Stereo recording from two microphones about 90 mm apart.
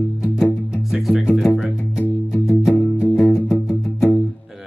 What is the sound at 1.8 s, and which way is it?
Music, 25° left (ahead or behind).